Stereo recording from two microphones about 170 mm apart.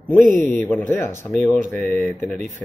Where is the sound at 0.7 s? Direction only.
10° left (ahead or behind).